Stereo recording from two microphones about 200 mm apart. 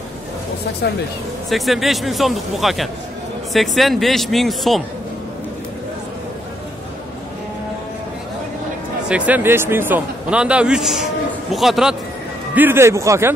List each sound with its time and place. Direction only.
0.8 s speech: 55° left (ahead or behind)
1.5 s speech: centre (ahead or behind)
9.1 s speech: 5° right (ahead or behind)